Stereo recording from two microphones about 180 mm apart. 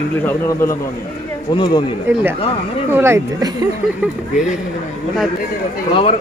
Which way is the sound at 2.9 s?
15° right (ahead or behind).